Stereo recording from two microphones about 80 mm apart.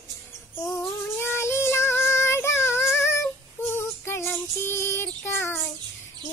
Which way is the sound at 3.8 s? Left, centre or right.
Left.